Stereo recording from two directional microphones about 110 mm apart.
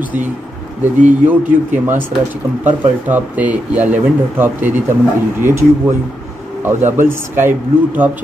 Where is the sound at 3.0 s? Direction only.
15° right (ahead or behind).